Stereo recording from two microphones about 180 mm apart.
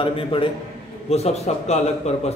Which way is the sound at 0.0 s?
30° left (ahead or behind).